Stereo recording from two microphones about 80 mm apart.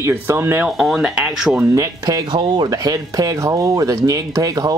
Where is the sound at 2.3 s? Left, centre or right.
Right.